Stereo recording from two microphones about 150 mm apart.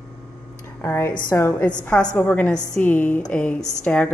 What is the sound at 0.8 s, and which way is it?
A woman's voice, 15° left (ahead or behind).